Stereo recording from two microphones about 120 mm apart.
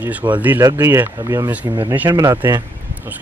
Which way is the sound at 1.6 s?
40° right (ahead or behind).